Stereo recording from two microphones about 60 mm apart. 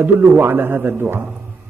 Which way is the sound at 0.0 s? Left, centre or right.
Right.